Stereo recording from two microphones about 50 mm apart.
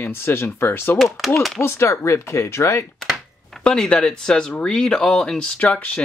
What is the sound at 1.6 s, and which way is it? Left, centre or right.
Speech, left.